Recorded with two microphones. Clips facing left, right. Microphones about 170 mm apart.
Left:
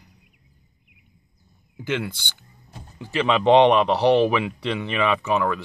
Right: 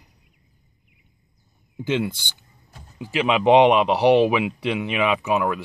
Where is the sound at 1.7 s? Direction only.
20° right (ahead or behind).